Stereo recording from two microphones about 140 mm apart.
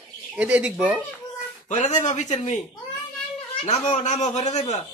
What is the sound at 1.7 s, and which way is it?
Speech, 60° left (ahead or behind).